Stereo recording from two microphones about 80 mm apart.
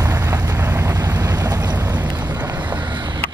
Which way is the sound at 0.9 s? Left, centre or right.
Right.